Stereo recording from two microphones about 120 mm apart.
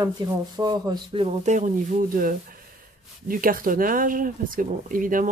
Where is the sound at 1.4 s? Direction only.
90° right.